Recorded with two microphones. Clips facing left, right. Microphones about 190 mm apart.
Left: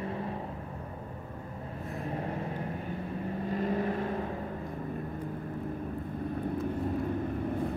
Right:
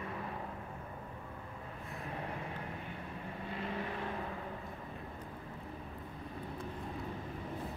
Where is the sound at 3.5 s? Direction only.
45° left (ahead or behind).